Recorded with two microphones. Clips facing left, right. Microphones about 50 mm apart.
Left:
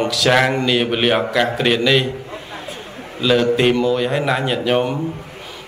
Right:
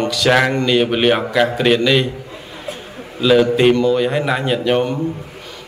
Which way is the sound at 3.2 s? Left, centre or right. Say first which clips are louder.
Right 3 dB; centre.